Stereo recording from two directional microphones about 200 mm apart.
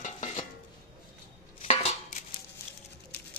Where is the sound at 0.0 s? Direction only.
35° left (ahead or behind).